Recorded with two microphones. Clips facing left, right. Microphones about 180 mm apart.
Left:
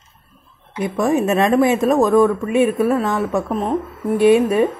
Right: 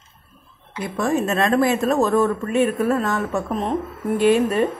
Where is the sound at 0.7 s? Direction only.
20° left (ahead or behind).